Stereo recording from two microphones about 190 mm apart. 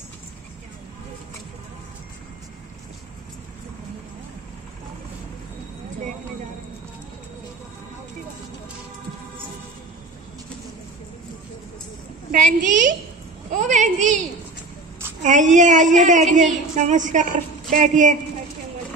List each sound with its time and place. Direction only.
12.3 s a woman's voice: 40° right (ahead or behind)
13.5 s a sound: 40° right (ahead or behind)
15.2 s a woman's voice: 40° right (ahead or behind)